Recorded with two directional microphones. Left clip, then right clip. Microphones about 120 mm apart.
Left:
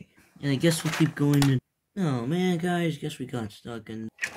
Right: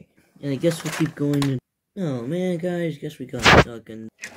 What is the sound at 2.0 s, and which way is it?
Speech, 15° left (ahead or behind).